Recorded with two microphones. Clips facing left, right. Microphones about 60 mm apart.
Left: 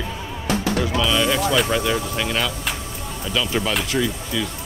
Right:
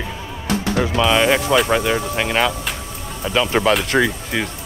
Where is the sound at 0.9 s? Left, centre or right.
Right.